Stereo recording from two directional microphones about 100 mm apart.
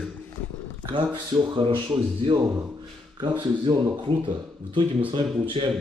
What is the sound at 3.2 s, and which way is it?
Speech, 50° right (ahead or behind).